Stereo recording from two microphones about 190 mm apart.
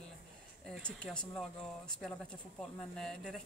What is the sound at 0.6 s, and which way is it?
Speech, 5° left (ahead or behind).